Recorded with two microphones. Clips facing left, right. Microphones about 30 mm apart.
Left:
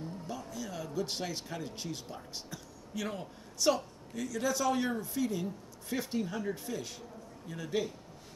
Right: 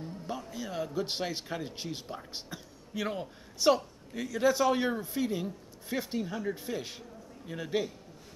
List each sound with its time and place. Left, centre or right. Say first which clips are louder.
0.3 s a man's voice: right 5 dB; right